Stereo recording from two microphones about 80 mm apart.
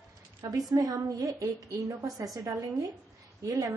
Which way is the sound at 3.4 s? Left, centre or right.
Right.